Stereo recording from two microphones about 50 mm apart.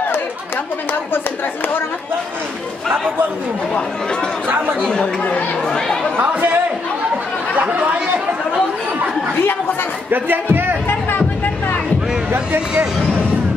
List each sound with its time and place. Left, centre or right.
4.8 s speech: centre
6.2 s speech: right
7.6 s speech: right
10.1 s speech: right
10.9 s music: left